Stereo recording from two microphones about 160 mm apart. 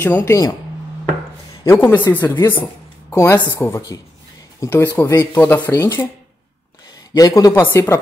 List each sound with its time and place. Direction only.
0.0 s speech: 15° left (ahead or behind)
1.6 s speech: 15° left (ahead or behind)
7.2 s speech: 20° left (ahead or behind)